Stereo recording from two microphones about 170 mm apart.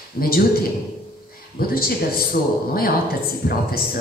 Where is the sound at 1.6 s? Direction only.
60° left (ahead or behind).